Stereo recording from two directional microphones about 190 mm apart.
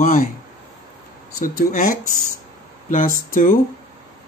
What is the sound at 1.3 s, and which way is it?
Speech, 45° left (ahead or behind).